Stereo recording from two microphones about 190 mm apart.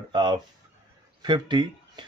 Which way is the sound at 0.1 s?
25° right (ahead or behind).